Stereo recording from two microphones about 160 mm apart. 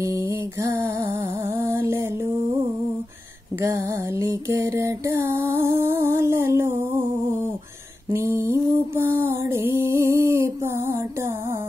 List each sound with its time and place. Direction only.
0.0 s music: 20° right (ahead or behind)
3.5 s music: 15° right (ahead or behind)
8.1 s mantra: 15° right (ahead or behind)